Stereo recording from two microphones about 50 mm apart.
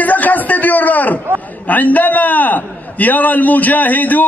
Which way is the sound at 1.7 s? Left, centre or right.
Left.